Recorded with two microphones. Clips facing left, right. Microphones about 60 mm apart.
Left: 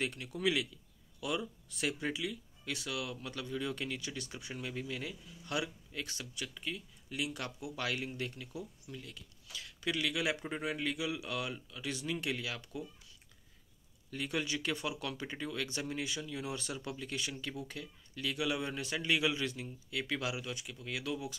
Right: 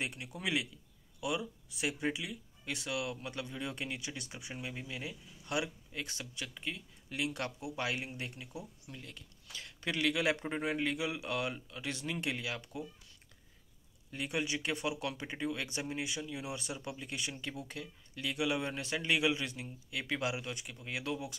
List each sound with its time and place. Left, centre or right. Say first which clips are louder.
0.0 s speech: left 4 dB; centre
1.4 s speech: even; centre
8.8 s speech: left 1 dB; right
14.1 s speech: even; right